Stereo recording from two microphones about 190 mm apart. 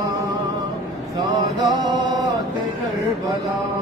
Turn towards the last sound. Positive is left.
turn(degrees=-20)  # may be behind; listen again after turning